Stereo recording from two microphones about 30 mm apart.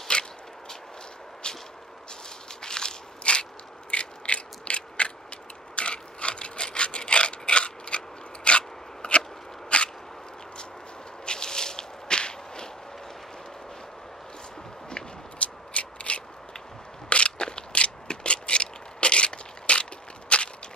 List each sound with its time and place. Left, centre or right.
0.1 s a sound: left
1.4 s vehicle: left
2.6 s crackle: left
3.3 s biting: left
3.9 s mechanisms: left
5.8 s rub: left
8.5 s biting: left
9.7 s a sound: left
11.2 s whip: left
15.3 s a sound: left
17.1 s crushing: left